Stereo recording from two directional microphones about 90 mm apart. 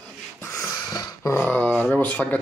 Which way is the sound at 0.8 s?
40° left (ahead or behind).